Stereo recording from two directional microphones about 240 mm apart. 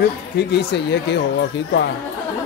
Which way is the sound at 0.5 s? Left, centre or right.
Left.